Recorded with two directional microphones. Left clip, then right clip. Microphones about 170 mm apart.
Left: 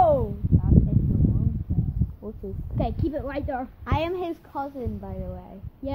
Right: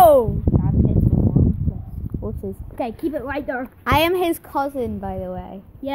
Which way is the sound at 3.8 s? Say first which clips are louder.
Right 11 dB; 50° right (ahead or behind).